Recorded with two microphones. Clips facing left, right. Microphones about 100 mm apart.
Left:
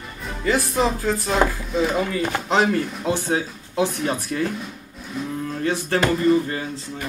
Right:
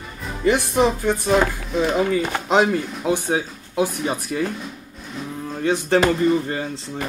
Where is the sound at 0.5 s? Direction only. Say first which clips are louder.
Right 3 dB; 20° right (ahead or behind).